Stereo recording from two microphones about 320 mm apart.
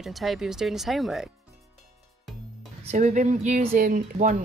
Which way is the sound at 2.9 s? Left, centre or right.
Right.